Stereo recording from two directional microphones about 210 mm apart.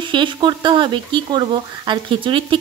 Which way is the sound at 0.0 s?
25° right (ahead or behind).